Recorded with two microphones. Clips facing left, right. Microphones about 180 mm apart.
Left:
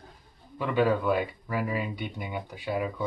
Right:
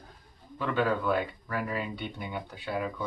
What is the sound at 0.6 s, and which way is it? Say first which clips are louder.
Speech: left 3 dB; 15° left (ahead or behind).